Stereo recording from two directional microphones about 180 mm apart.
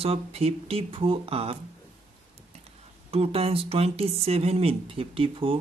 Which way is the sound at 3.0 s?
35° right (ahead or behind).